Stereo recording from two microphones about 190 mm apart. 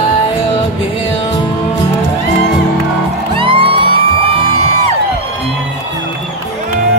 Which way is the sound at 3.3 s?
30° right (ahead or behind).